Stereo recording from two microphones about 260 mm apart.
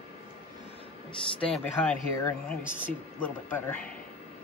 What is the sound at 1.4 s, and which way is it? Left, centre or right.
Speech, centre.